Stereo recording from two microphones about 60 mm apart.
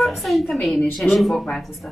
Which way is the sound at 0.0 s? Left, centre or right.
Centre.